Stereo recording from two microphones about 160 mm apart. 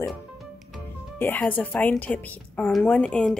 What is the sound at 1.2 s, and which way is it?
Speech, 10° left (ahead or behind).